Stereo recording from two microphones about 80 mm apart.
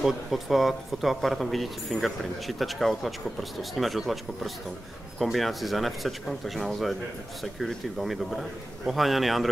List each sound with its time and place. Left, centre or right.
0.0 s speech: centre